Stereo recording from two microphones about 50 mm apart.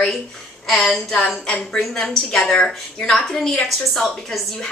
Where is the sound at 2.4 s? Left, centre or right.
Centre.